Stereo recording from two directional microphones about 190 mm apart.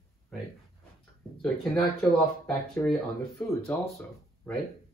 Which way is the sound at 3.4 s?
10° left (ahead or behind).